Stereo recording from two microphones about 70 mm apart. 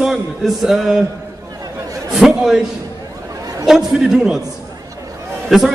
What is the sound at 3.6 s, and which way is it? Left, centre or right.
Speech, centre.